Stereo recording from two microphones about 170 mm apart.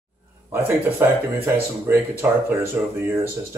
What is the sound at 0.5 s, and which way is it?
Speech, 10° right (ahead or behind).